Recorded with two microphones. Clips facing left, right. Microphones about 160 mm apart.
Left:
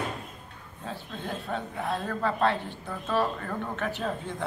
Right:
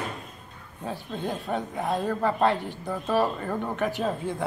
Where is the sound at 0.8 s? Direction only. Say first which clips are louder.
Right 5 dB; 15° right (ahead or behind).